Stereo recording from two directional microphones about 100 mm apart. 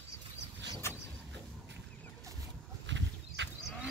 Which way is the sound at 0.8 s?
25° left (ahead or behind).